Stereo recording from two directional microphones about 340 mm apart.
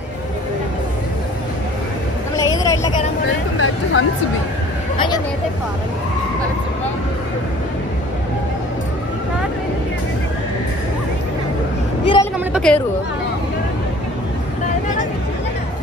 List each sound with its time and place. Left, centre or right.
2.5 s vehicle: centre
3.5 s music: left
12.0 s vehicle: centre
12.5 s chatter: centre